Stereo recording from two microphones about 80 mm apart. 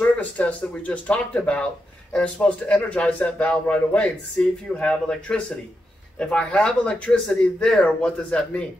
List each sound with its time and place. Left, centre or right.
0.0 s a man's voice: centre